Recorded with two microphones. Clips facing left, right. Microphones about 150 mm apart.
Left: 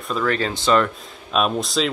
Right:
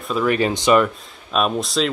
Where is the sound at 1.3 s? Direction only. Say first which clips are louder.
Even; centre (ahead or behind).